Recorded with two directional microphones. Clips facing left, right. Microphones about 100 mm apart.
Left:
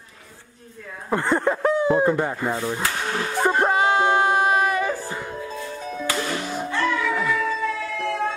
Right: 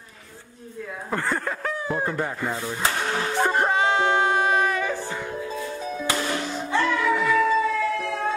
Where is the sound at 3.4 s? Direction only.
Centre (ahead or behind).